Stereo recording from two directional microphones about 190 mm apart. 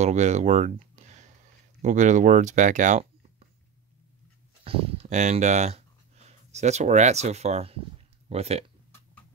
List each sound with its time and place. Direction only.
0.0 s speech: 35° right (ahead or behind)
4.6 s speech: 30° right (ahead or behind)